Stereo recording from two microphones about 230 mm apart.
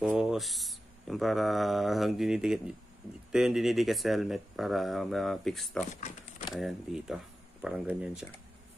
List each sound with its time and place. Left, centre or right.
0.0 s speech: centre
5.9 s speech: left
6.5 s speech: centre